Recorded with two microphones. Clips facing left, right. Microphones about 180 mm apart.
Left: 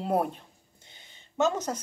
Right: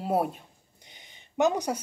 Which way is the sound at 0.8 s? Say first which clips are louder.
Right 3 dB; 15° right (ahead or behind).